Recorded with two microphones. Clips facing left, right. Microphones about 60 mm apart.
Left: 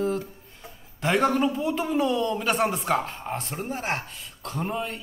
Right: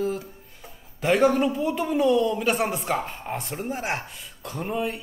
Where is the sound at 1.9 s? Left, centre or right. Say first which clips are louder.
Right 5 dB; centre.